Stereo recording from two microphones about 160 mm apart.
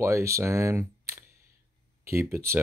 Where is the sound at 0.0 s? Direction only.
15° right (ahead or behind).